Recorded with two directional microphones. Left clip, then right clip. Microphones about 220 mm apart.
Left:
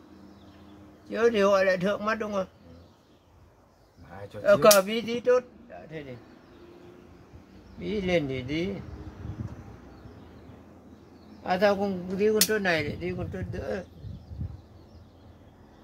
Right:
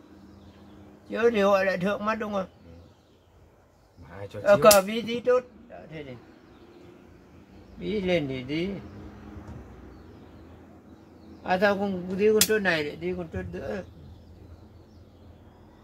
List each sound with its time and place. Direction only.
1.1 s speech: 20° left (ahead or behind)
4.4 s speech: 20° left (ahead or behind)
7.8 s speech: 20° left (ahead or behind)
11.4 s speech: 20° left (ahead or behind)